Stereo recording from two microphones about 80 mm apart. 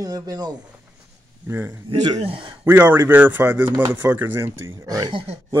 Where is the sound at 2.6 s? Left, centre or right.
Right.